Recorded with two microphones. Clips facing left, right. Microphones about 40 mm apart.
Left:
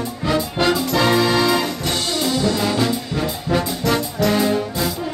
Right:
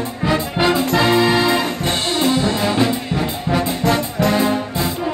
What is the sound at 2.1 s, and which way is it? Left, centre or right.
Brass instrument, right.